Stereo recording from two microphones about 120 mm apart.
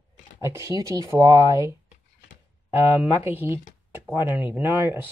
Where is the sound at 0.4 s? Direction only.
25° right (ahead or behind).